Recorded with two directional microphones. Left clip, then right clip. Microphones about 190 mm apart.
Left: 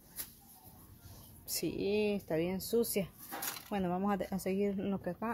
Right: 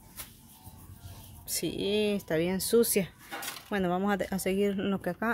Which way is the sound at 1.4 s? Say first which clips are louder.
Right 4 dB; centre (ahead or behind).